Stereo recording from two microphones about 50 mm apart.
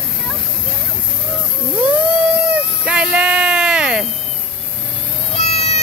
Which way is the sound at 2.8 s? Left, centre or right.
Centre.